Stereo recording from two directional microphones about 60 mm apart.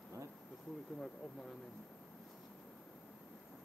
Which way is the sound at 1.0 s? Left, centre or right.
Centre.